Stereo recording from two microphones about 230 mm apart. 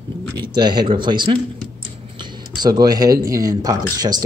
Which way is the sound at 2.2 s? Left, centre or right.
Centre.